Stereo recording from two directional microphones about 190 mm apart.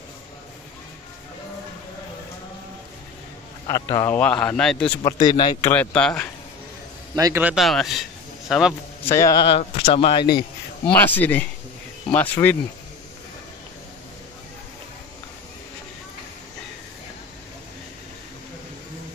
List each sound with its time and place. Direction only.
3.6 s a man's voice: 15° left (ahead or behind)
5.0 s a man's voice: 25° left (ahead or behind)
5.6 s a man's voice: 10° left (ahead or behind)
7.2 s speech: 15° right (ahead or behind)
9.0 s a man's voice: 15° left (ahead or behind)
10.9 s a man's voice: 10° left (ahead or behind)